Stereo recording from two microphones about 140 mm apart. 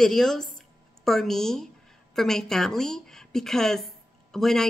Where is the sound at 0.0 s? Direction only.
Centre (ahead or behind).